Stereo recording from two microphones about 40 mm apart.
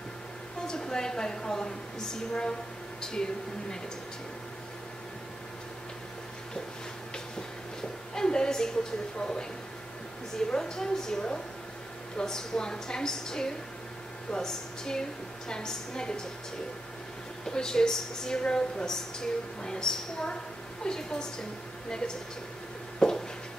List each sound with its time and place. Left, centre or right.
0.7 s a woman's voice: centre
8.1 s a sound: centre
9.2 s speech: left
10.5 s a woman's voice: centre
17.5 s a woman's voice: centre
22.9 s a sound: centre